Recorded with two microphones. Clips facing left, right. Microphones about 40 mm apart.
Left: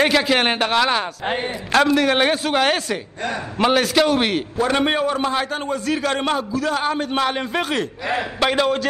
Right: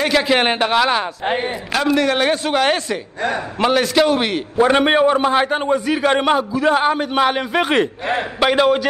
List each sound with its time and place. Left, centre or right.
0.1 s a man's voice: centre
2.0 s a man's voice: centre
4.6 s a man's voice: right
7.6 s a man's voice: right
8.4 s a man's voice: centre